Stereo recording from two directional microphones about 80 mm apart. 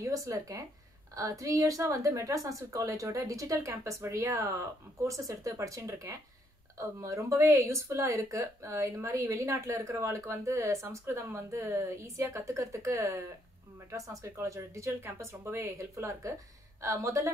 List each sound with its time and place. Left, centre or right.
0.0 s a woman's voice: right